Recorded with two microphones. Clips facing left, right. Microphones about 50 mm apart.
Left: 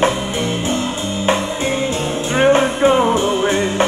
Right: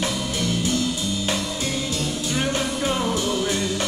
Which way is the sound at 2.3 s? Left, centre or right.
Left.